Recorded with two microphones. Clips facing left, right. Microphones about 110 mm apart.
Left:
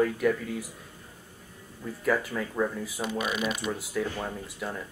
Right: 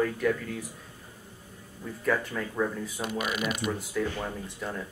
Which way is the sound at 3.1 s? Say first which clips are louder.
Left 1 dB; 30° left (ahead or behind).